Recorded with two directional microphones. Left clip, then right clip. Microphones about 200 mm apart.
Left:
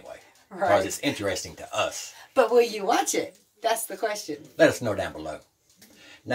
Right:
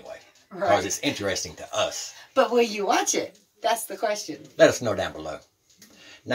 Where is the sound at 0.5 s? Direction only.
10° left (ahead or behind).